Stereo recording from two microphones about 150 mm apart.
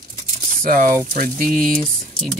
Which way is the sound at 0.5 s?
70° right (ahead or behind).